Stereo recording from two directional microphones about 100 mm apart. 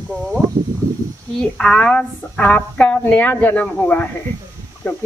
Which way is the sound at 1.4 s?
10° left (ahead or behind).